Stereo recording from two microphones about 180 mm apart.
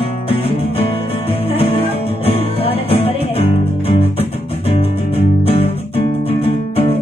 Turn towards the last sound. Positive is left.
turn(degrees=30)  # may be behind; listen again after turning